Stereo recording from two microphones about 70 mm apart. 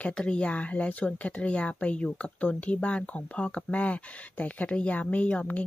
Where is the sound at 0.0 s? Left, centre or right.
Centre.